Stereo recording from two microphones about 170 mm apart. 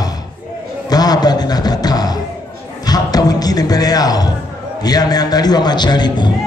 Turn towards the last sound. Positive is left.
turn(degrees=25)  # may be behind; listen again after turning